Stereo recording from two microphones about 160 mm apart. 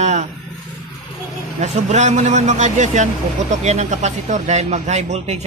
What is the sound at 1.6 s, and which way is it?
A man's voice, 45° right (ahead or behind).